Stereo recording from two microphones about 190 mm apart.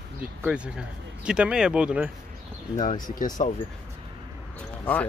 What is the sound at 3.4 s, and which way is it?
Speech, 40° left (ahead or behind).